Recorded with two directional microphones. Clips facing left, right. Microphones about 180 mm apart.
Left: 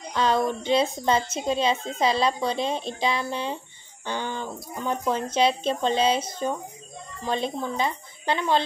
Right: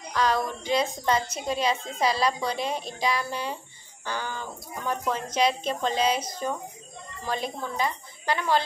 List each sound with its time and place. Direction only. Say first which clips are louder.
0.1 s a woman's voice: left 3 dB; 25° left (ahead or behind)